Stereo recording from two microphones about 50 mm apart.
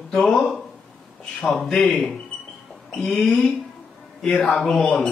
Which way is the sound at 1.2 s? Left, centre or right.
Centre.